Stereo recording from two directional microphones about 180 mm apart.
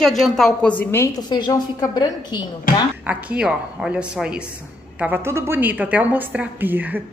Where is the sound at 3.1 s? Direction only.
5° right (ahead or behind).